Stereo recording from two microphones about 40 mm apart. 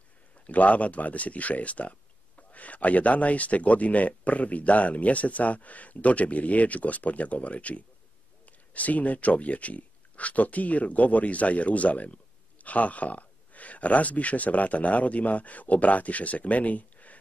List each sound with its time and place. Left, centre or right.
0.5 s speech: left